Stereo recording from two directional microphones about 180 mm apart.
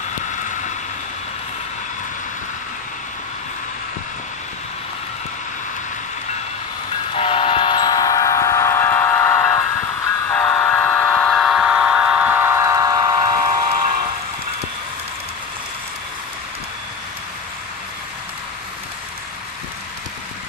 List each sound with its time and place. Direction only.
7.2 s train: 30° left (ahead or behind); by 13.7 s 20° right (ahead or behind)